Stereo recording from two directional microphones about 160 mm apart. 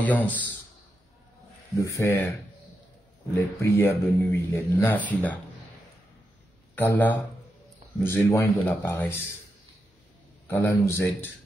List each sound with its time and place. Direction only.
0.0 s a man's voice: 10° left (ahead or behind)
2.0 s a man's voice: 15° left (ahead or behind)
3.3 s a man's voice: 15° left (ahead or behind)
6.7 s a man's voice: 10° left (ahead or behind)
10.5 s a man's voice: 15° left (ahead or behind)